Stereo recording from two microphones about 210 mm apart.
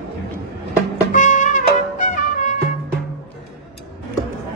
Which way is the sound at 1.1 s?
35° left (ahead or behind).